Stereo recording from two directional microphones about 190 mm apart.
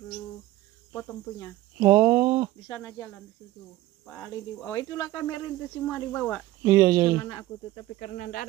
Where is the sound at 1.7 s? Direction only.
15° right (ahead or behind).